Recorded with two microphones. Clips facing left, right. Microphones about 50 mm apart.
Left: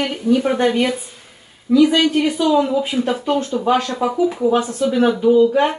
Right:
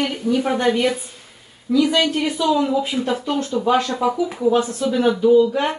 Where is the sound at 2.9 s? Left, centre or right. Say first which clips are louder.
Left 3 dB; left.